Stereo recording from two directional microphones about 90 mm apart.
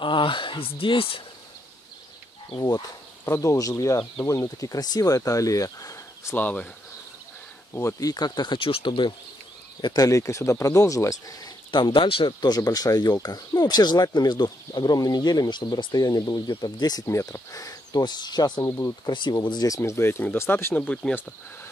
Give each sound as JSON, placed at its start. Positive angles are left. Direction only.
{"t": 0.0, "sound": "speech", "side_deg": 65}
{"t": 3.3, "sound": "speech", "side_deg": 35}
{"t": 6.3, "sound": "speech", "side_deg": 15}
{"t": 8.0, "sound": "speech", "side_deg": 45}
{"t": 8.5, "sound": "speech", "side_deg": 90}
{"t": 10.0, "sound": "speech", "side_deg": 35}
{"t": 11.7, "sound": "speech", "side_deg": 65}
{"t": 12.4, "sound": "speech", "side_deg": 50}
{"t": 17.0, "sound": "speech", "side_deg": 35}
{"t": 19.1, "sound": "speech", "side_deg": 55}
{"t": 19.8, "sound": "speech", "side_deg": 30}
{"t": 20.7, "sound": "speech", "side_deg": 15}